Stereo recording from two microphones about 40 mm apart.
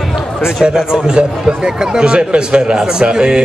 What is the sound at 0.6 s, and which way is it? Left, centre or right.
A man's voice, centre.